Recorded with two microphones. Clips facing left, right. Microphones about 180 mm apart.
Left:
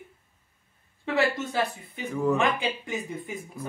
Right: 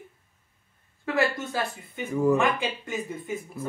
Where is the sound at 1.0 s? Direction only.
20° left (ahead or behind).